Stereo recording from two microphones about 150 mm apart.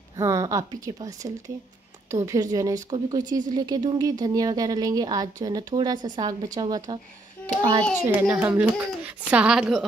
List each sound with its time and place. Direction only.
0.2 s speech: 20° right (ahead or behind)
8.1 s speech: 15° right (ahead or behind)